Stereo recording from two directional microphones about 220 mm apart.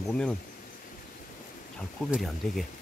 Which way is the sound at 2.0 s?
Centre (ahead or behind).